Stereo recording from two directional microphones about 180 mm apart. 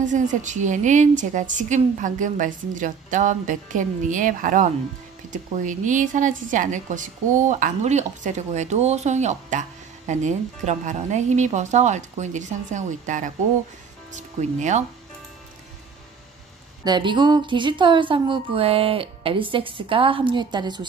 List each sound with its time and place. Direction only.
0.0 s a woman's voice: 45° right (ahead or behind)
16.8 s a woman's voice: 25° right (ahead or behind)